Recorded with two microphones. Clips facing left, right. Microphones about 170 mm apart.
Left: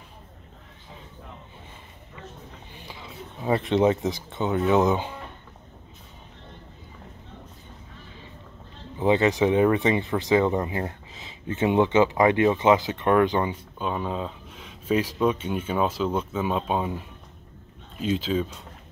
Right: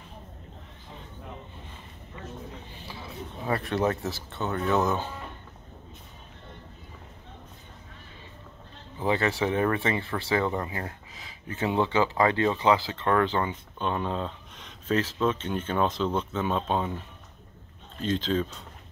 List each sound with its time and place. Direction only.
2.8 s speech: 15° left (ahead or behind)
9.0 s speech: 20° left (ahead or behind)